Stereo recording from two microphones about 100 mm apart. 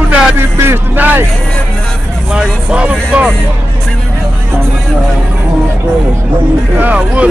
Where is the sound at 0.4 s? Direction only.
25° right (ahead or behind).